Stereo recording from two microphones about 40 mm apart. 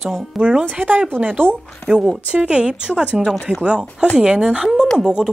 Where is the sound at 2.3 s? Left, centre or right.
Right.